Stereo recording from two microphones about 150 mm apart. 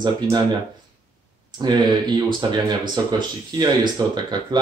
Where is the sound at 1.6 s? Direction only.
30° right (ahead or behind).